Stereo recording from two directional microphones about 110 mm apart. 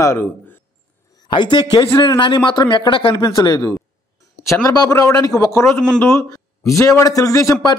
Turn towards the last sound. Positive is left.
turn(degrees=35)  # may be behind; listen again after turning